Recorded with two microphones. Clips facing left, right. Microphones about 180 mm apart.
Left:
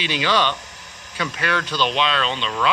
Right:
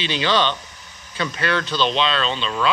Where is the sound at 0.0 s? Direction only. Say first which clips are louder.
Right 1 dB; 10° left (ahead or behind).